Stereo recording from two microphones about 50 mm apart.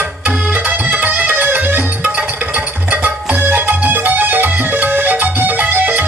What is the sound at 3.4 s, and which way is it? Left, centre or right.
Music, right.